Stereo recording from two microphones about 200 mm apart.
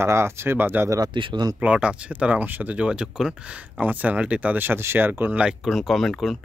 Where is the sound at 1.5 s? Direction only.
5° right (ahead or behind).